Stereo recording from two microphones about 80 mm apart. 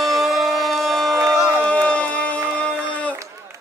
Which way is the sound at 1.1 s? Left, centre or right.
Right.